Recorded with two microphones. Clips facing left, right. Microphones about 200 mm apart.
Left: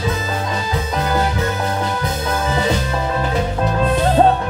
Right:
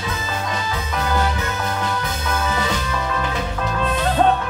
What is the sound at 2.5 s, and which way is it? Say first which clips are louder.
Music: left 4 dB; 30° left (ahead or behind).